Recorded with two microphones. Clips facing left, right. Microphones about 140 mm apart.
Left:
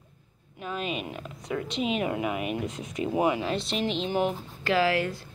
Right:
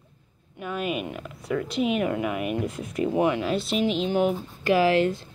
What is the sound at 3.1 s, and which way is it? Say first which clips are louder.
Speech: right 1 dB; 15° left (ahead or behind).